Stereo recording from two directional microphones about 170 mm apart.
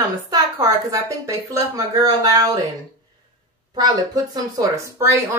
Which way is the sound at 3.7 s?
20° right (ahead or behind).